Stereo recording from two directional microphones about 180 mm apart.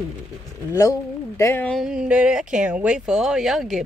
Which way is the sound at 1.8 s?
5° right (ahead or behind).